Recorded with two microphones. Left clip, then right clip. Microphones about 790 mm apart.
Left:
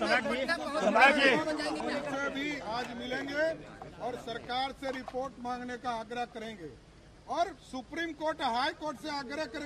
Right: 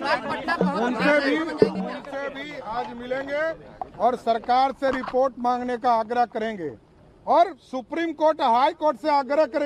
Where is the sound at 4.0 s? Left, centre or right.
Right.